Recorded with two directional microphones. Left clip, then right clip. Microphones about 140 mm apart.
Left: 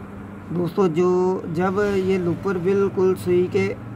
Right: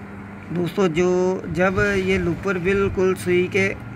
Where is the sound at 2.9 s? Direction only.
5° right (ahead or behind).